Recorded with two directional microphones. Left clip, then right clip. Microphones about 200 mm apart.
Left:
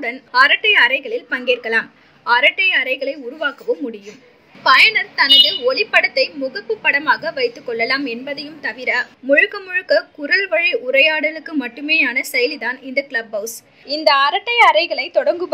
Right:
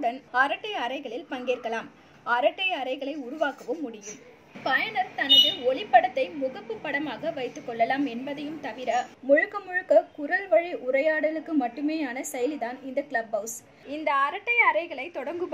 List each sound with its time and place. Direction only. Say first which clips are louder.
0.0 s a woman's voice: left 10 dB; 10° left (ahead or behind)
13.3 s a woman's voice: left 6 dB; 45° left (ahead or behind)
13.8 s a woman's voice: left 11 dB; 10° left (ahead or behind)